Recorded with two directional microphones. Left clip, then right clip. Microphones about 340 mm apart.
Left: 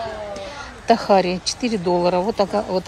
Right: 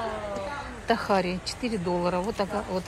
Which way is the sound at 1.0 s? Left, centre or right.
Centre.